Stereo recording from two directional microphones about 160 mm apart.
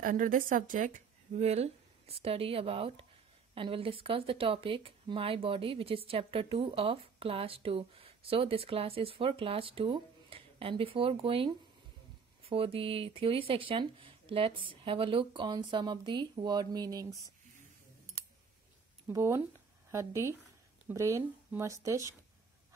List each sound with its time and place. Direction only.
0.0 s speech: 60° right (ahead or behind); by 17.2 s 20° right (ahead or behind)
19.0 s speech: 15° right (ahead or behind)